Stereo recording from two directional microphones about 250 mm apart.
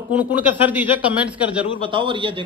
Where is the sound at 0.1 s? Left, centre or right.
Centre.